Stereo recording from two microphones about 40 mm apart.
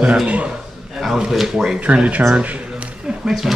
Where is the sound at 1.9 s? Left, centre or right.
Right.